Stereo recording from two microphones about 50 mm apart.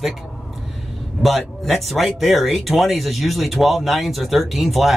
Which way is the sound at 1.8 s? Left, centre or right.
Centre.